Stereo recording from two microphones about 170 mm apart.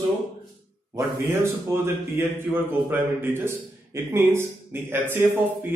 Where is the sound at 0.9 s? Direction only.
15° right (ahead or behind).